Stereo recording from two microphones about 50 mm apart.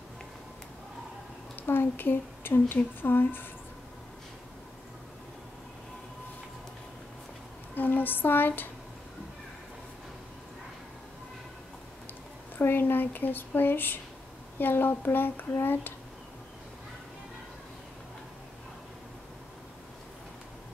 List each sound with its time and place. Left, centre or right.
1.7 s speech: left
7.7 s a sound: left
12.5 s speech: left